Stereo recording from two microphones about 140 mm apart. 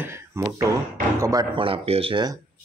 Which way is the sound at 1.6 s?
40° right (ahead or behind).